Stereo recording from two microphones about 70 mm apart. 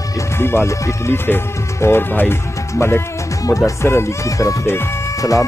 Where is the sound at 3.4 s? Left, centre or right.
Left.